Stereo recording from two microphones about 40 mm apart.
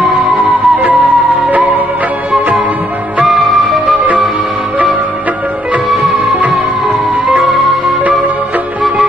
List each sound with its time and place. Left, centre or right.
0.0 s music: right
3.3 s music: centre